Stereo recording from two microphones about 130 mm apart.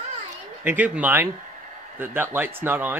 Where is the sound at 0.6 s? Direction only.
15° right (ahead or behind).